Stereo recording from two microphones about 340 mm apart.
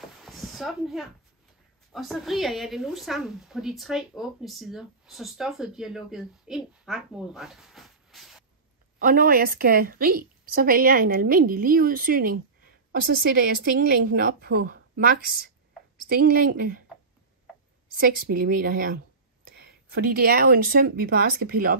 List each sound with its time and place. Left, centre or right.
0.2 s a sound: centre
1.9 s a woman's voice: centre
9.0 s a woman's voice: right
18.3 s a woman's voice: right